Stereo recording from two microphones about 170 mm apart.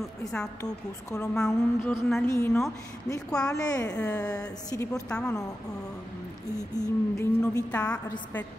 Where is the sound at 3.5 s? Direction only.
20° left (ahead or behind).